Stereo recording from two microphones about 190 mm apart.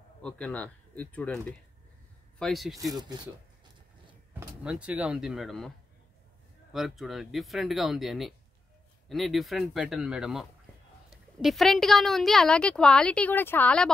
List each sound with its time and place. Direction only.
0.2 s a woman's voice: 5° left (ahead or behind)
2.9 s speech: 20° right (ahead or behind)
4.3 s a woman's voice: 5° right (ahead or behind)
6.7 s a woman's voice: centre (ahead or behind)